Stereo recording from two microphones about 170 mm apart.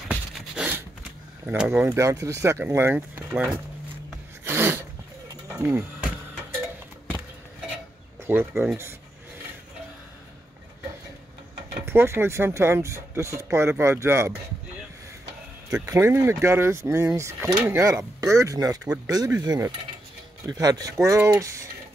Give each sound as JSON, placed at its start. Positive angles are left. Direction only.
{"t": 0.1, "sound": "a sound", "side_deg": -10}
{"t": 1.4, "sound": "speech", "side_deg": -10}
{"t": 4.5, "sound": "sneeze", "side_deg": -15}
{"t": 5.6, "sound": "speech", "side_deg": -15}
{"t": 8.3, "sound": "speech", "side_deg": -10}
{"t": 11.8, "sound": "speech", "side_deg": -15}
{"t": 15.7, "sound": "speech", "side_deg": -20}